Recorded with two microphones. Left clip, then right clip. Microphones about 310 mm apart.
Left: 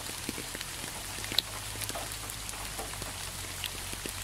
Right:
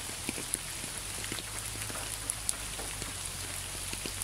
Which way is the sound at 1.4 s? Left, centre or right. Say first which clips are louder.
Left 11 dB; left.